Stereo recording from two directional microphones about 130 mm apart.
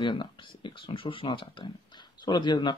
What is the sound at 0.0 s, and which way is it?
Speech, 40° left (ahead or behind).